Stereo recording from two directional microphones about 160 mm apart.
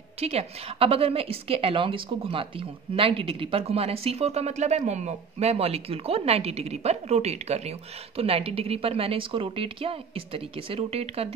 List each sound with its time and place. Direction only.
0.2 s a woman's voice: 40° right (ahead or behind)